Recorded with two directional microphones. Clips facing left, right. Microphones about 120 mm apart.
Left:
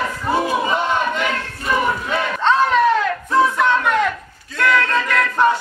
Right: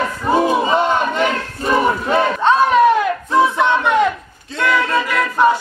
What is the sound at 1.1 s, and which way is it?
Battle cry, 35° right (ahead or behind).